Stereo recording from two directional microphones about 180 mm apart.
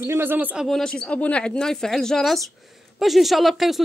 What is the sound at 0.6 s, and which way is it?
A woman's voice, centre (ahead or behind).